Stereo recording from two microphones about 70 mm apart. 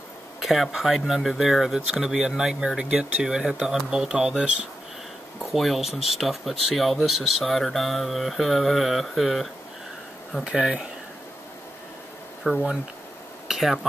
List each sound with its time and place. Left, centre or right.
0.4 s speech: centre
10.4 s speech: centre
12.4 s speech: centre
13.5 s speech: centre